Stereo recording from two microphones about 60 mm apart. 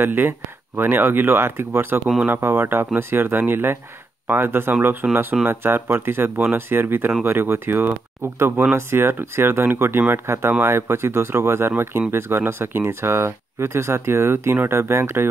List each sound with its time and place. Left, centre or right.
0.0 s speech: right
5.0 s speech: right
5.4 s speech: right